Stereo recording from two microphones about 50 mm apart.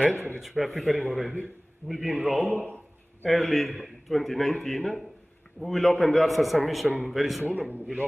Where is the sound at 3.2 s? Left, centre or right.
Centre.